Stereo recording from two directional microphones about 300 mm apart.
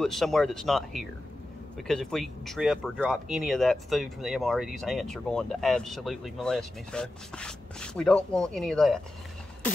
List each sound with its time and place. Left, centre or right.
0.0 s speech: centre